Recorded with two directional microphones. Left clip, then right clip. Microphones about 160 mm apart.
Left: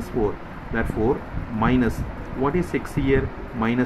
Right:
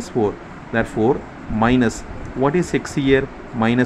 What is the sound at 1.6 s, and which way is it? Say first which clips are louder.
Speech: right 5 dB; 40° right (ahead or behind).